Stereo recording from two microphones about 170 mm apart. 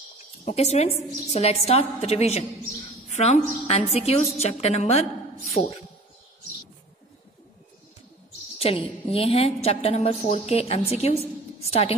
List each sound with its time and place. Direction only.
0.5 s a woman's voice: 40° left (ahead or behind)
8.5 s a woman's voice: 35° left (ahead or behind)